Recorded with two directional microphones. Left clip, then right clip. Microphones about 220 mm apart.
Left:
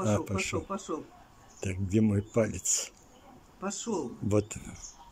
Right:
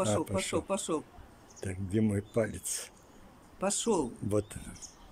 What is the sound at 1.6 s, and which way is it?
Speech, 5° left (ahead or behind).